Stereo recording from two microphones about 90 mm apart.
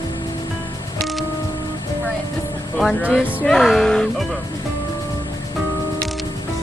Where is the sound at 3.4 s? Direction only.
5° left (ahead or behind).